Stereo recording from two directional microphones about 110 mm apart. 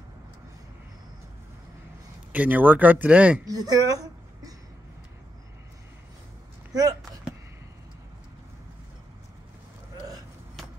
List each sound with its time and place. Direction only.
2.3 s speech: 15° right (ahead or behind)
3.4 s speech: 35° right (ahead or behind)
6.7 s speech: 35° right (ahead or behind)
7.0 s a sound: centre (ahead or behind)